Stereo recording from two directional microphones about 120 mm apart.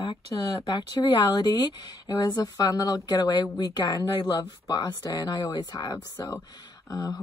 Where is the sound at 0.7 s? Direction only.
35° left (ahead or behind).